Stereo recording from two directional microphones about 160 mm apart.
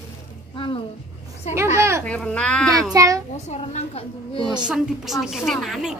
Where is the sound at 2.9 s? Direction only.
20° right (ahead or behind).